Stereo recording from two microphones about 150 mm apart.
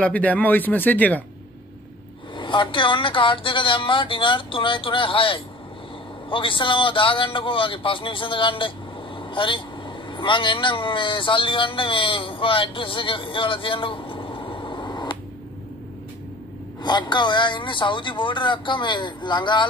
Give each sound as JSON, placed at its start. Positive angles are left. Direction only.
{"t": 0.0, "sound": "speech", "side_deg": 10}
{"t": 2.3, "sound": "a man's voice", "side_deg": 35}
{"t": 16.8, "sound": "speech", "side_deg": 30}